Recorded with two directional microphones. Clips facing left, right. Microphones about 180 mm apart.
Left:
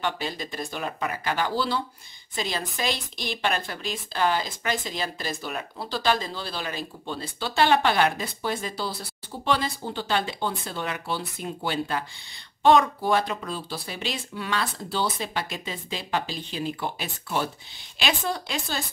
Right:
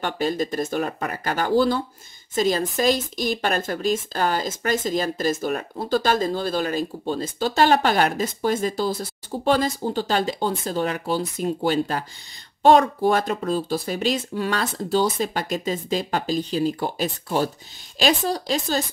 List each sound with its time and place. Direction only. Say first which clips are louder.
0.0 s speech: right 6 dB; 45° right (ahead or behind)